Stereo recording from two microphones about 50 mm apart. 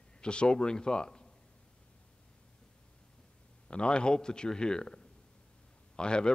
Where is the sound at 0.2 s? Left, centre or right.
Centre.